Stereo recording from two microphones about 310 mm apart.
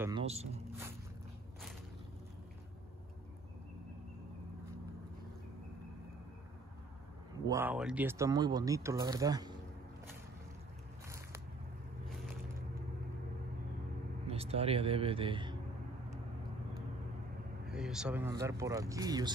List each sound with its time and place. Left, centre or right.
0.0 s speech: centre
7.4 s speech: centre
14.2 s speech: centre
17.6 s speech: centre